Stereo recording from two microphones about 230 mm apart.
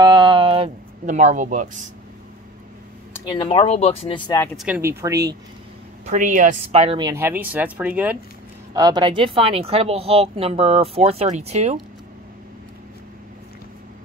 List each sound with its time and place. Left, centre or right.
0.0 s a sound: centre
3.1 s speech: centre
4.6 s a woman's voice: centre
6.0 s a woman's voice: right; by 8.2 s centre
8.7 s speech: centre